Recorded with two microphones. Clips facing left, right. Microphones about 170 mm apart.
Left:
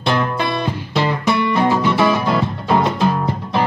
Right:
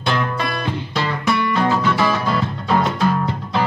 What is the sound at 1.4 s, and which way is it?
Music, 15° left (ahead or behind).